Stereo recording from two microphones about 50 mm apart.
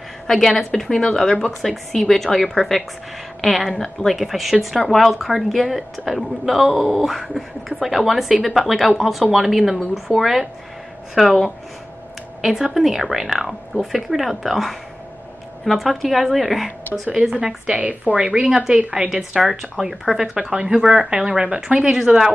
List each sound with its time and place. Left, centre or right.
0.3 s a woman's voice: centre
17.1 s speech: centre
18.2 s speech: centre
19.3 s speech: centre